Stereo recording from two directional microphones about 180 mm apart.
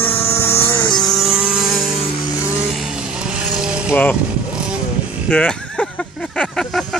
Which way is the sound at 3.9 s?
10° left (ahead or behind).